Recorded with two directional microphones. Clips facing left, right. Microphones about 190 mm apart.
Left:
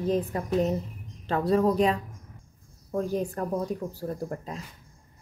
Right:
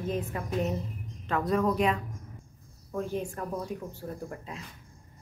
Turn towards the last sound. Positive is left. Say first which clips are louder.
# left 5 dB
turn(degrees=40)  # may be behind; listen again after turning